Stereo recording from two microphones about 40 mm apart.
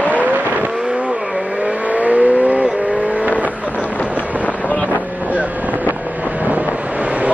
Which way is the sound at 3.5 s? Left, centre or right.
Right.